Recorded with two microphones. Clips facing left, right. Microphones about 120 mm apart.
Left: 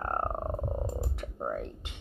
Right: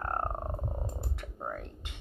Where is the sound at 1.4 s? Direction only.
25° left (ahead or behind).